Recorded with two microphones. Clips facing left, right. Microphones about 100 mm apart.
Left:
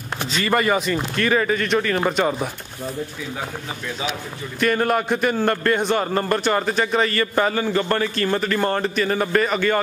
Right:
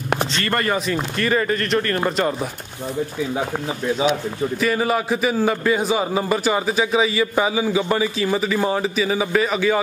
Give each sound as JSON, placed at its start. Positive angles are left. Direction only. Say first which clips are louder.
{"t": 0.3, "sound": "a man's voice", "louder": "left 2 dB", "side_deg": 5}
{"t": 4.6, "sound": "a man's voice", "louder": "left 2 dB", "side_deg": 0}